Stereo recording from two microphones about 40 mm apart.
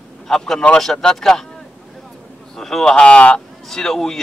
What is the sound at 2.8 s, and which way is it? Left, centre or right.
Speech, left.